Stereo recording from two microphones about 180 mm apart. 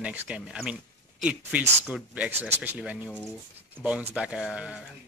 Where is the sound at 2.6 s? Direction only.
5° right (ahead or behind).